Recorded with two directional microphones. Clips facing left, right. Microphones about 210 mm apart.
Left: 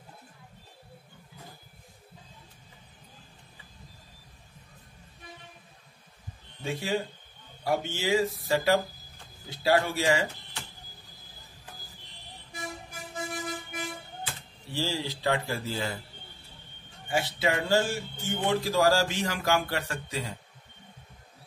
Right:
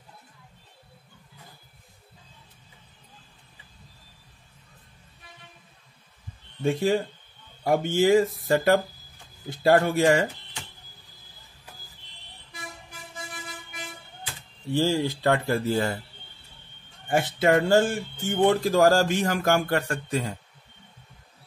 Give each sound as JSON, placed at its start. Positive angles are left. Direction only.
{"t": 6.6, "sound": "speech", "side_deg": -50}
{"t": 13.3, "sound": "music", "side_deg": 45}
{"t": 14.7, "sound": "speech", "side_deg": -55}
{"t": 17.1, "sound": "speech", "side_deg": -50}